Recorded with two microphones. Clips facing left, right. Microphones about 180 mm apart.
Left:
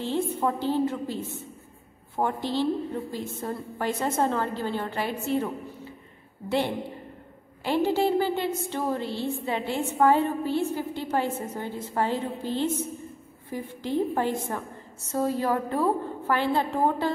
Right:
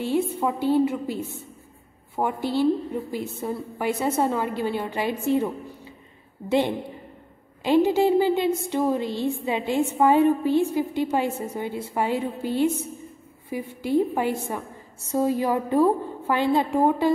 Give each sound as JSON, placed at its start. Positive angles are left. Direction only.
{"t": 0.0, "sound": "a woman's voice", "side_deg": -10}
{"t": 7.6, "sound": "a woman's voice", "side_deg": -15}